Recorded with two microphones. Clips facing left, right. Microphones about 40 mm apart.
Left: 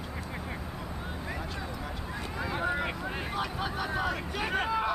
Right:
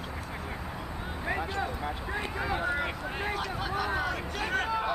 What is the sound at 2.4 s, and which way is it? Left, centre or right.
Speech, centre.